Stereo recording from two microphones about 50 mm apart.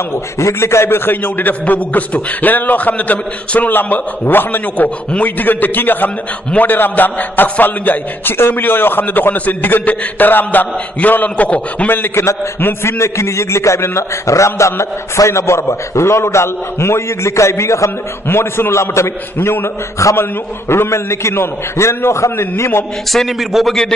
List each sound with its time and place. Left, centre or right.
0.4 s a man's voice: left
12.8 s a man's voice: left
18.3 s a man's voice: left
20.0 s a man's voice: left
20.6 s a man's voice: left